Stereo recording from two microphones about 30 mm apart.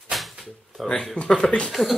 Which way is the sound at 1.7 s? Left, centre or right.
Centre.